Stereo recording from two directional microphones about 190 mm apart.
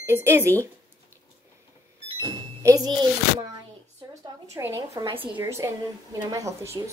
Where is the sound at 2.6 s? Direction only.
20° right (ahead or behind).